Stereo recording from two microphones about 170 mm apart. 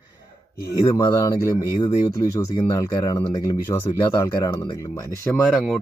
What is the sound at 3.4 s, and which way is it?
Speech, 15° left (ahead or behind).